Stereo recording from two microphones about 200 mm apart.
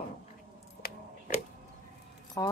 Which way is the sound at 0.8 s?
45° left (ahead or behind).